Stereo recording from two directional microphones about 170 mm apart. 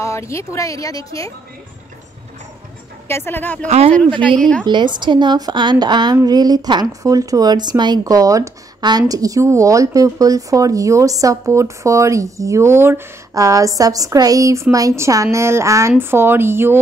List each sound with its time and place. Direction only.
0.0 s speech: 15° left (ahead or behind)
3.1 s speech: 15° left (ahead or behind)
3.6 s speech: 40° right (ahead or behind)
4.2 s speech: 5° left (ahead or behind)
4.6 s a woman's voice: 25° right (ahead or behind)